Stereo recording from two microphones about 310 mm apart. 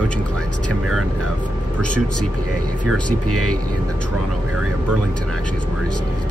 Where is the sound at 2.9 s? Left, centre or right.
Right.